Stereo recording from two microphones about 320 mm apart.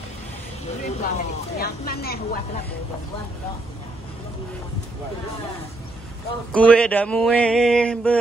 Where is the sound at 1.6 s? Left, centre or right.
Left.